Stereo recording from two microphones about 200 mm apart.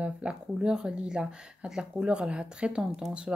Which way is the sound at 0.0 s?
5° right (ahead or behind).